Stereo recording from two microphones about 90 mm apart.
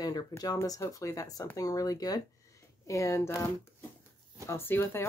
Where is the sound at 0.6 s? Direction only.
35° left (ahead or behind).